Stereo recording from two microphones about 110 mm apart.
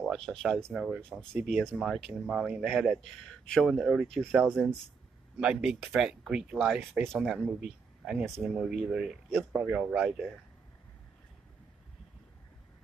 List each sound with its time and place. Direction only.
0.0 s speech: centre (ahead or behind)
0.7 s speech: 10° right (ahead or behind)
1.6 s speech: centre (ahead or behind)
3.1 s speech: 5° left (ahead or behind)
4.2 s speech: 20° right (ahead or behind)
5.4 s speech: 10° right (ahead or behind)
9.3 s speech: 15° right (ahead or behind)